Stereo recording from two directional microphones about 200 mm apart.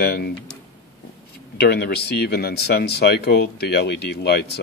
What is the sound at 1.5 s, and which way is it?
Speech, 55° left (ahead or behind).